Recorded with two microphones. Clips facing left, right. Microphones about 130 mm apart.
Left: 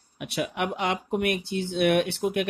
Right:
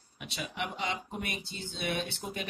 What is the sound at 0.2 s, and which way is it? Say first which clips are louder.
Speech: left 9 dB; 60° left (ahead or behind).